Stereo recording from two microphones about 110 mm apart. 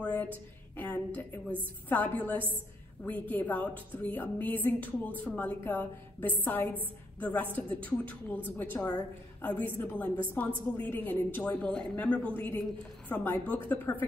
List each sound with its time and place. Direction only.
0.0 s music: 15° left (ahead or behind)
1.9 s a woman's voice: 15° left (ahead or behind)